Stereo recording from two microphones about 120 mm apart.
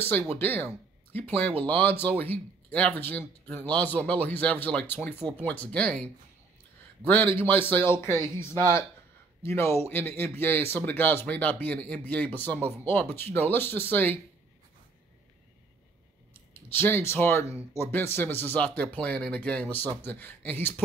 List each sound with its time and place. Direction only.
0.4 s speech: 15° left (ahead or behind)
7.3 s speech: 15° left (ahead or behind)
16.3 s speech: 20° left (ahead or behind)